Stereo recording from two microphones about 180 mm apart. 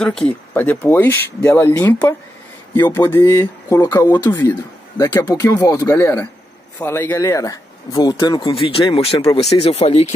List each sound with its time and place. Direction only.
0.0 s speech: 5° left (ahead or behind); by 10.1 s 35° left (ahead or behind)